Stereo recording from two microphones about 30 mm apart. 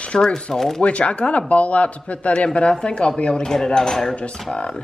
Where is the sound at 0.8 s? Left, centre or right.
Left.